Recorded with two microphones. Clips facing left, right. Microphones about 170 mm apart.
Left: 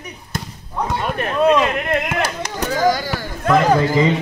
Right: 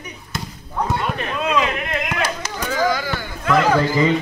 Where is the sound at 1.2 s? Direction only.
50° left (ahead or behind).